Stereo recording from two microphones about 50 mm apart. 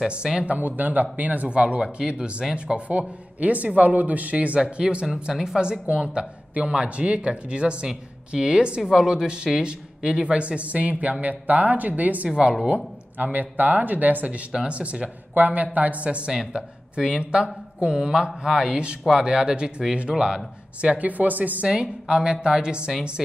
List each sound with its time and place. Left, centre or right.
0.1 s a woman's voice: centre
0.5 s speech: right
1.6 s a woman's voice: centre
12.3 s a woman's voice: centre
12.6 s a woman's voice: right
21.6 s a woman's voice: centre